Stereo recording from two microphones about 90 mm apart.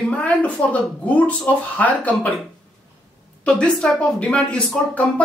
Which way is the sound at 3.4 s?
10° left (ahead or behind).